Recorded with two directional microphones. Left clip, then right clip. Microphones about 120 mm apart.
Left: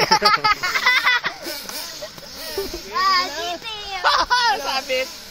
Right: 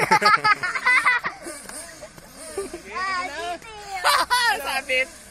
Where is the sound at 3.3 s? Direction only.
Centre (ahead or behind).